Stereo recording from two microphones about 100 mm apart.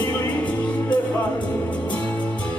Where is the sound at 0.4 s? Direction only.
15° left (ahead or behind).